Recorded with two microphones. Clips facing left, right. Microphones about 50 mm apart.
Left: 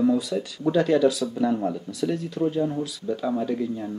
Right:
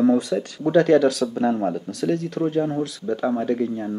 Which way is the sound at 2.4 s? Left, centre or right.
Right.